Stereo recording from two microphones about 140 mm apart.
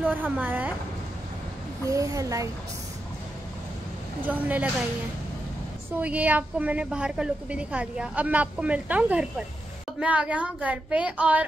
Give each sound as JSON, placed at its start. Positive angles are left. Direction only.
{"t": 0.0, "sound": "a woman's voice", "side_deg": -10}
{"t": 1.9, "sound": "speech", "side_deg": -25}
{"t": 4.3, "sound": "a woman's voice", "side_deg": -10}
{"t": 5.9, "sound": "a woman's voice", "side_deg": -10}